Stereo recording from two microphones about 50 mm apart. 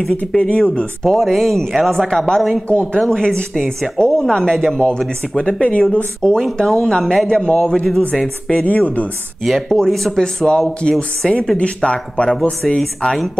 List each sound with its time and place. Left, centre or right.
0.4 s speech: centre
1.0 s speech: centre
2.7 s speech: left
5.6 s speech: left
6.5 s speech: centre; by 9.1 s left
9.4 s speech: centre